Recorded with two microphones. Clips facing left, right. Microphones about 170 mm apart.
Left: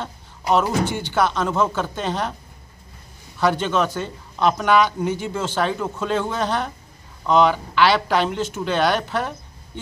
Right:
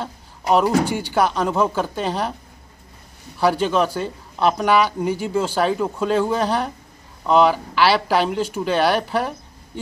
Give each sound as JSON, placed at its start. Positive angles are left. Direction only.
{"t": 0.0, "sound": "speech", "side_deg": -10}
{"t": 3.3, "sound": "speech", "side_deg": -10}